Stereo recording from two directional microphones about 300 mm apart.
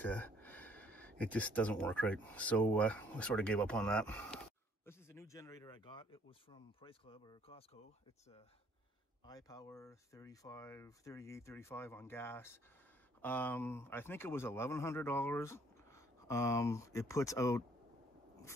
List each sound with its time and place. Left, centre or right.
0.0 s a man's voice: centre
9.2 s a man's voice: centre